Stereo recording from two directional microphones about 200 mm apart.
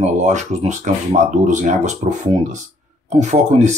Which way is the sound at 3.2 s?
35° right (ahead or behind).